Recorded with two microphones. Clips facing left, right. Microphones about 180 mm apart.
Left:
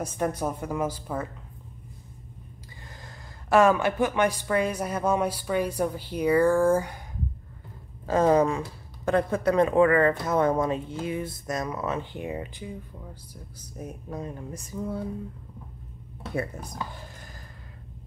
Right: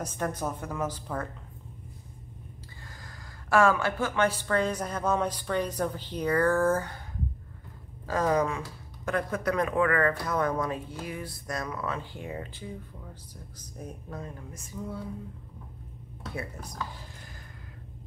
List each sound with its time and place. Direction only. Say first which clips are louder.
0.0 s speech: left 4 dB; 10° left (ahead or behind)
3.0 s speech: left 2 dB; 20° left (ahead or behind)
8.1 s speech: left 5 dB; 25° left (ahead or behind)
14.5 s speech: left 5 dB; 40° left (ahead or behind)